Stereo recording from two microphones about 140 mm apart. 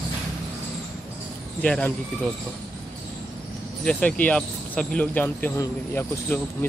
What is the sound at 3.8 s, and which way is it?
Speech, 10° left (ahead or behind).